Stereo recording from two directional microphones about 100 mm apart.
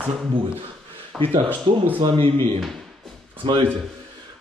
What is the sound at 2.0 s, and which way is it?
Speech, 65° right (ahead or behind).